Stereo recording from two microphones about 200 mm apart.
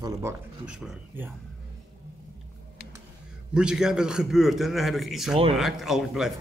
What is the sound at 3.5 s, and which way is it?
A man's voice, 5° right (ahead or behind).